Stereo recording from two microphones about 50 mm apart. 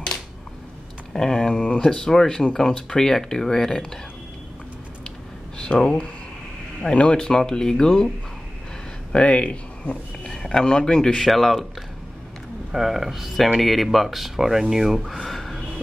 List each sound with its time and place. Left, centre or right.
1.1 s speech: centre
5.6 s speech: centre
9.1 s speech: left
10.3 s speech: centre
11.2 s speech: centre
12.7 s speech: centre